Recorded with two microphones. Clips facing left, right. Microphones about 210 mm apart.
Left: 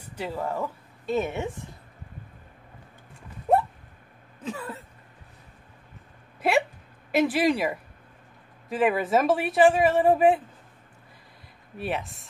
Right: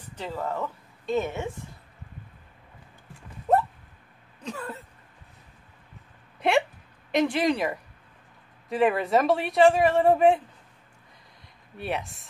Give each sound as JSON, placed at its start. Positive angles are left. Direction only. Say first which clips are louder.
{"t": 0.1, "sound": "speech", "louder": "left 1 dB", "side_deg": 10}
{"t": 3.5, "sound": "a sound", "louder": "even", "side_deg": 10}
{"t": 7.1, "sound": "speech", "louder": "left 1 dB", "side_deg": 5}
{"t": 11.8, "sound": "speech", "louder": "left 1 dB", "side_deg": 0}